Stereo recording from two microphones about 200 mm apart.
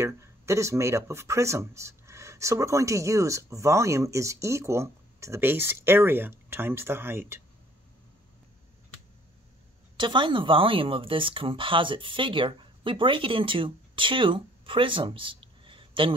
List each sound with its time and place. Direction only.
0.0 s speech: 15° right (ahead or behind)
9.9 s speech: 25° right (ahead or behind)